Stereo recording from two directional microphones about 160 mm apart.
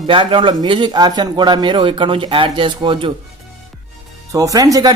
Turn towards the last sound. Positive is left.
turn(degrees=-25)  # may be behind; listen again after turning